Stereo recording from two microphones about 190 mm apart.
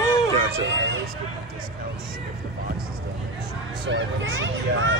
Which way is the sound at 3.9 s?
80° right.